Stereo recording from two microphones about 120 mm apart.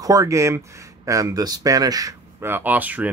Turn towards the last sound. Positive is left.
turn(degrees=-15)  # may be behind; listen again after turning